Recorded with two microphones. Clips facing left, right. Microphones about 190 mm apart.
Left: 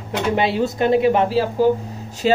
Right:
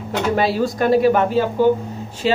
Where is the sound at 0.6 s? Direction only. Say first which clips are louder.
Right 1 dB; 20° left (ahead or behind).